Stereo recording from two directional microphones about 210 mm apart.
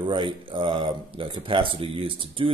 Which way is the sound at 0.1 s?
25° right (ahead or behind).